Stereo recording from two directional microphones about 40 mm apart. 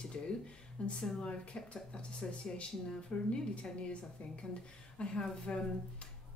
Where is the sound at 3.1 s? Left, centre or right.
Left.